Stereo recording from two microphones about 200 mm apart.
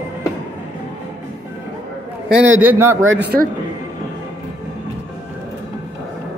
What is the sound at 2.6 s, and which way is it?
Speech, 10° right (ahead or behind).